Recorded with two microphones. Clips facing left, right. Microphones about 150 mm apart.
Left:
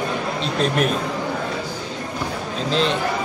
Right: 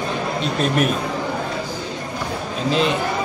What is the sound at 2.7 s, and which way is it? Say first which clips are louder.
Speech: right 2 dB; 5° right (ahead or behind).